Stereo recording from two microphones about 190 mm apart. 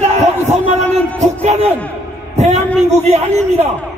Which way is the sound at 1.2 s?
35° right (ahead or behind).